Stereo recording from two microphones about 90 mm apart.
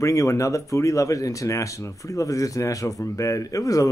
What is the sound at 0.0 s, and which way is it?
Speech, 35° left (ahead or behind).